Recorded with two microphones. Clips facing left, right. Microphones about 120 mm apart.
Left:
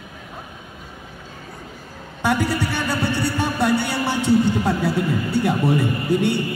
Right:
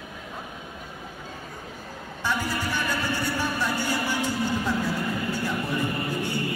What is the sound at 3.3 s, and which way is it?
Music, 70° left (ahead or behind).